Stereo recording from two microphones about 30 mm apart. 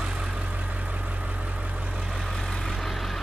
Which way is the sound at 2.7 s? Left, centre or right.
Centre.